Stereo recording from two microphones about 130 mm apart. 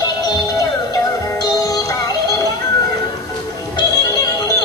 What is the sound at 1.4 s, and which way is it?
Music, 25° left (ahead or behind).